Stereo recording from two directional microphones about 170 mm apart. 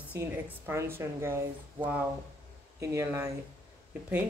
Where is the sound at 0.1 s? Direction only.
15° right (ahead or behind).